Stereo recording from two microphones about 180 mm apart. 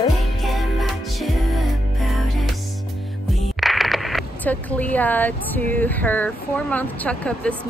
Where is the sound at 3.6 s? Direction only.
Centre (ahead or behind).